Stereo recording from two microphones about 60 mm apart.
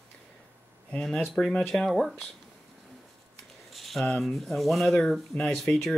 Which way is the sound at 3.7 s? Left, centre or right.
Centre.